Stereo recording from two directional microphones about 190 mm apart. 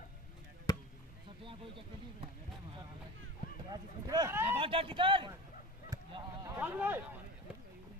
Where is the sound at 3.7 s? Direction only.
20° right (ahead or behind).